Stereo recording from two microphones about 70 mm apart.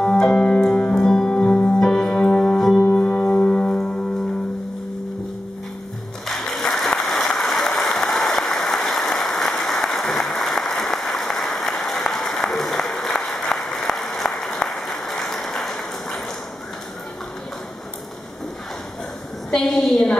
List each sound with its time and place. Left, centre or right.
0.0 s music: centre
6.2 s music: centre
7.1 s applause: centre
19.5 s a sound: centre